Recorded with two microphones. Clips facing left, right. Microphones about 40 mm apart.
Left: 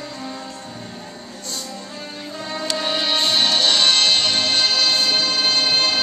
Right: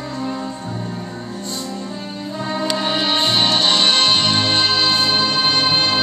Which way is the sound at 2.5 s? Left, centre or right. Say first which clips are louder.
Right 3 dB; centre.